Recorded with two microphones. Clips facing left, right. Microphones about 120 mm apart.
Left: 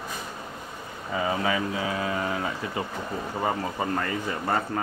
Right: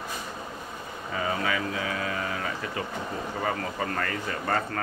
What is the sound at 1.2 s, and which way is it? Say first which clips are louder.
Speech: left 2 dB; 25° left (ahead or behind).